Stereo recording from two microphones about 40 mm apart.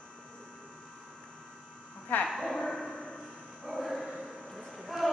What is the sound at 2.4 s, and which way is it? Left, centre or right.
Dog, centre.